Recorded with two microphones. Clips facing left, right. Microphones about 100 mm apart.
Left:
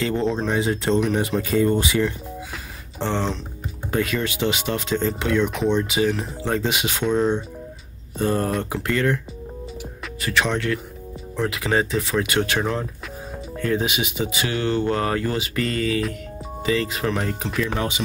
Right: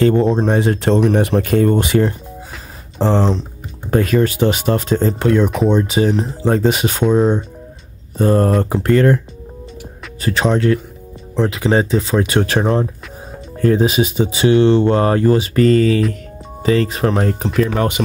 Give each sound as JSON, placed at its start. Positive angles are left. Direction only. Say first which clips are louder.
{"t": 0.0, "sound": "speech", "louder": "right 9 dB", "side_deg": -50}
{"t": 3.0, "sound": "speech", "louder": "right 8 dB", "side_deg": -35}
{"t": 10.2, "sound": "speech", "louder": "right 7 dB", "side_deg": -35}
{"t": 17.6, "sound": "speech", "louder": "right 8 dB", "side_deg": -50}